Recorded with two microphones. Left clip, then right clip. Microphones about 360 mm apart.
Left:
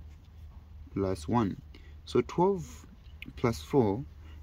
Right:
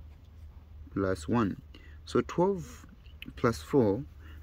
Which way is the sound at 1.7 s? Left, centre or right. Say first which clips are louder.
Left 1 dB; centre.